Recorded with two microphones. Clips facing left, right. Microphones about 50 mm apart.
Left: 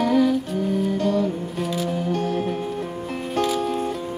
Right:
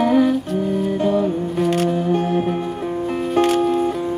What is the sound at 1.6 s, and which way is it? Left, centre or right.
Music, right.